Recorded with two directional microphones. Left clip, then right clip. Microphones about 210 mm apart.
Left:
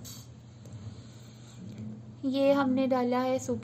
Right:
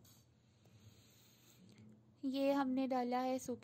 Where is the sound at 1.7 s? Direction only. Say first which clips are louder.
Left 19 dB; 50° right (ahead or behind).